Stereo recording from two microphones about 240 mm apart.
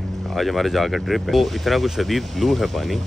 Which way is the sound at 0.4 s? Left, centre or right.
Centre.